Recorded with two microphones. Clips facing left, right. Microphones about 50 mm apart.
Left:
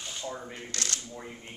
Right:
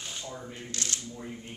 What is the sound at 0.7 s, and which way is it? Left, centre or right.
Speech, left.